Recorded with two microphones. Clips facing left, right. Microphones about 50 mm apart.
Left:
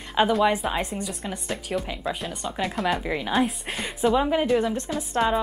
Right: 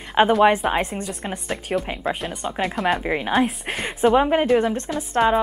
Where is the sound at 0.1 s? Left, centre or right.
Right.